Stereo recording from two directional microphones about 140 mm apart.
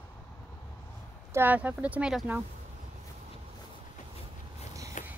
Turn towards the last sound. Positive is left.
turn(degrees=65)  # may be behind; listen again after turning